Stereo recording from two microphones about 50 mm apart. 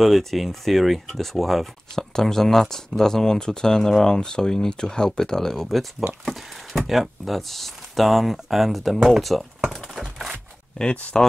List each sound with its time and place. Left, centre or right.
0.0 s speech: centre
10.8 s speech: left